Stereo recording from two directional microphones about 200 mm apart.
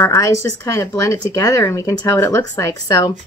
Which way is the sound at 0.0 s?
15° left (ahead or behind).